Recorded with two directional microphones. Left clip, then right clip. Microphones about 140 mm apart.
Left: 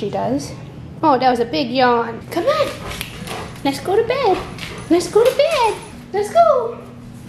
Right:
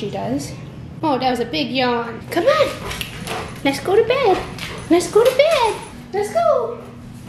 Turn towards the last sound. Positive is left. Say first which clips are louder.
# left 5 dB
turn(degrees=10)  # may be behind; listen again after turning